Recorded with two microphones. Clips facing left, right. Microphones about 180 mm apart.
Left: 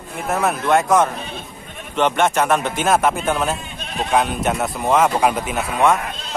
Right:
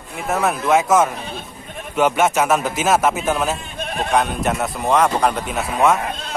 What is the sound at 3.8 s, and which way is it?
Bleat, 50° right (ahead or behind).